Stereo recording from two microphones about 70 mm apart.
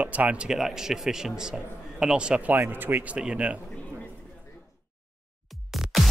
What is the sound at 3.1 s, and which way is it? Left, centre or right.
Speech, centre.